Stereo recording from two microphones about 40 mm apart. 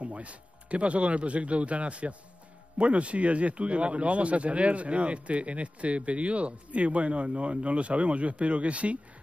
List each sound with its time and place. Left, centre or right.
0.0 s speech: right